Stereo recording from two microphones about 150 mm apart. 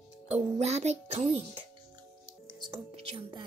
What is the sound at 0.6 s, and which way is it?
A child's voice, 45° right (ahead or behind).